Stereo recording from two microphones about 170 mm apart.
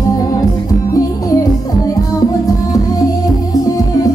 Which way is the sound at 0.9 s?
20° left (ahead or behind).